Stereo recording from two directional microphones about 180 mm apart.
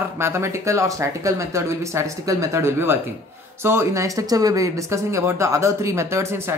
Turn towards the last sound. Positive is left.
turn(degrees=-15)  # may be behind; listen again after turning